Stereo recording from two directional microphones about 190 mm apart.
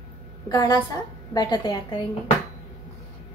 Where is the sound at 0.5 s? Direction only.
20° left (ahead or behind).